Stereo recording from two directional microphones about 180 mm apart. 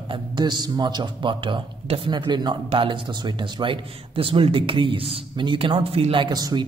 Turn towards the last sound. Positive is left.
turn(degrees=-20)  # may be behind; listen again after turning